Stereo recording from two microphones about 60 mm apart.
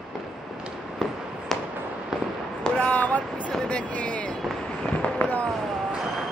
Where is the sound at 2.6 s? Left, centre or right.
Centre.